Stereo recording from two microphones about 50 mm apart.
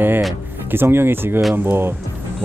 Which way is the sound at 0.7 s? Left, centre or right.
Right.